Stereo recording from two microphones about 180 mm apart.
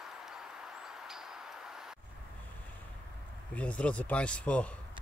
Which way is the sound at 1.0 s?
Centre (ahead or behind).